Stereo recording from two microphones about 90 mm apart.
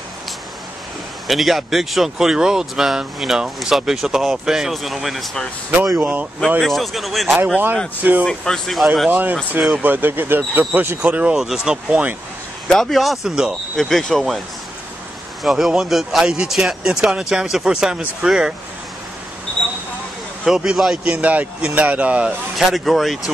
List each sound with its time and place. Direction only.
1.2 s speech: centre (ahead or behind)
5.9 s a man's voice: 15° right (ahead or behind)
6.6 s speech: centre (ahead or behind)
8.0 s a man's voice: 20° right (ahead or behind)
8.3 s speech: 5° left (ahead or behind)
9.1 s a man's voice: 20° right (ahead or behind)
12.6 s speech: centre (ahead or behind)
15.4 s speech: 5° right (ahead or behind)
20.4 s a man's voice: 5° right (ahead or behind)
22.6 s speech: centre (ahead or behind)